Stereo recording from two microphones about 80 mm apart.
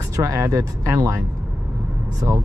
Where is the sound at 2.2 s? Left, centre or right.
Right.